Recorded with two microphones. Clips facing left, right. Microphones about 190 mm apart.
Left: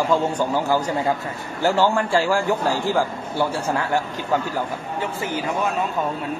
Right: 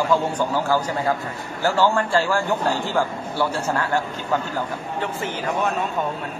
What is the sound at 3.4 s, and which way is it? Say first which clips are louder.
Speech: left 1 dB; 15° left (ahead or behind).